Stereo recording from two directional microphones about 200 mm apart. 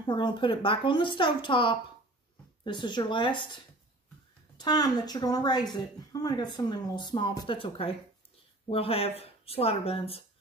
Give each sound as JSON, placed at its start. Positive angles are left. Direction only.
{"t": 0.0, "sound": "speech", "side_deg": 25}